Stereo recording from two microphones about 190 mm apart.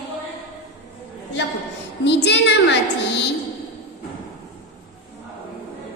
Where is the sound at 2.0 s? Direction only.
65° left (ahead or behind).